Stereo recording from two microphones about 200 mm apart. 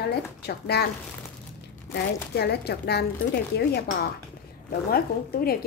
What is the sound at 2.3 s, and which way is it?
Speech, 55° left (ahead or behind).